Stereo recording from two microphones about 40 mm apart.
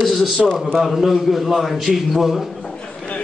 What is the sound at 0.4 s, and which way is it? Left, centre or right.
A man's voice, centre.